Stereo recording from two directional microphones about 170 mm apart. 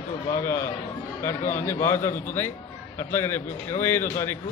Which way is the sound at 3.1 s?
15° left (ahead or behind).